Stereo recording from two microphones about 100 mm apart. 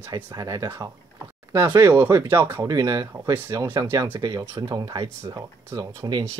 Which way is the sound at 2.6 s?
40° right (ahead or behind).